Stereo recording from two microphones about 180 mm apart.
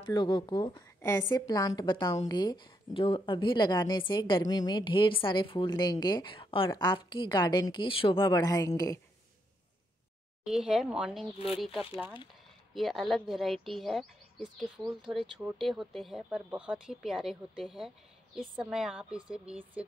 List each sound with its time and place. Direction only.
0.0 s speech: 25° left (ahead or behind)
10.4 s speech: 5° right (ahead or behind)